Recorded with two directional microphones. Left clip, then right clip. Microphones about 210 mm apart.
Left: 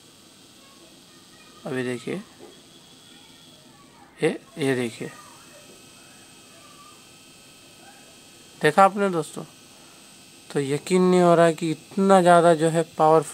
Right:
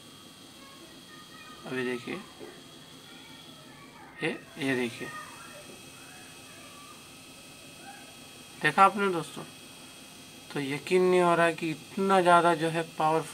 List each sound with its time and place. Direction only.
1.7 s speech: 50° left (ahead or behind)
4.2 s speech: 50° left (ahead or behind)
8.5 s speech: 50° left (ahead or behind)
10.5 s speech: 50° left (ahead or behind)